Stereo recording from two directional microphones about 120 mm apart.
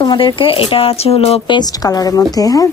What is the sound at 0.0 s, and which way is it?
Speech, 40° left (ahead or behind).